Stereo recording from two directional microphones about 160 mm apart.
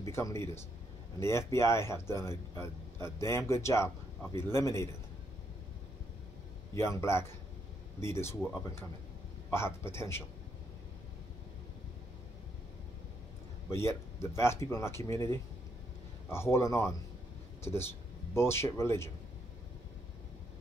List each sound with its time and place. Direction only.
0.0 s a man's voice: 20° left (ahead or behind)
6.7 s a man's voice: 15° left (ahead or behind)
9.5 s a man's voice: 15° left (ahead or behind)
13.7 s a man's voice: 15° left (ahead or behind)
16.3 s a man's voice: 15° left (ahead or behind)